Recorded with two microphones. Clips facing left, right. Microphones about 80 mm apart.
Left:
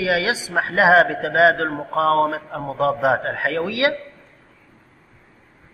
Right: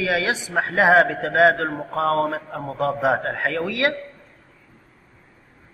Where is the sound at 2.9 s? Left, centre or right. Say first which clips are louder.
Left 1 dB; centre.